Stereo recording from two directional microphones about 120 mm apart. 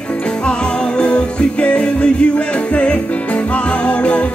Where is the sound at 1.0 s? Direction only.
10° left (ahead or behind).